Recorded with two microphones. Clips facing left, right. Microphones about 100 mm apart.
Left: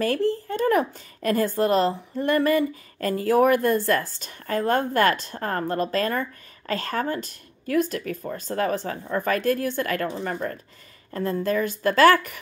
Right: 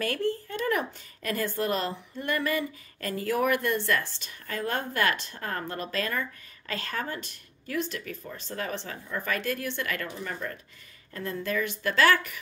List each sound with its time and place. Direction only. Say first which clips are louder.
0.0 s a woman's voice: left 6 dB; 35° left (ahead or behind)